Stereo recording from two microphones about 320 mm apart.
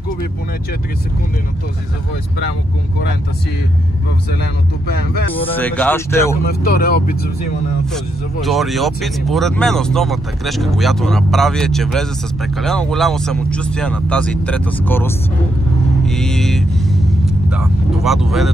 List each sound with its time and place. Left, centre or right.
5.3 s speech: centre
6.4 s speech: left
7.9 s speech: centre